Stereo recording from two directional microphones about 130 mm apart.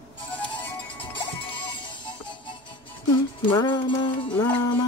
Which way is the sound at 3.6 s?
40° left (ahead or behind).